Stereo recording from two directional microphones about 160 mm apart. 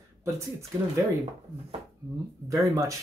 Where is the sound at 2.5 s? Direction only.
20° right (ahead or behind).